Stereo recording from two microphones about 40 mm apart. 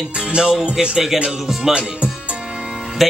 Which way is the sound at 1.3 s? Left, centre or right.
Centre.